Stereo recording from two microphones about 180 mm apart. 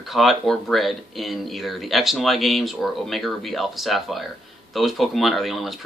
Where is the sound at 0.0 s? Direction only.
Centre (ahead or behind).